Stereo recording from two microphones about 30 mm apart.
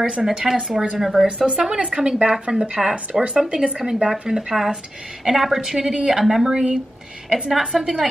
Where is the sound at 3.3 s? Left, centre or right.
Right.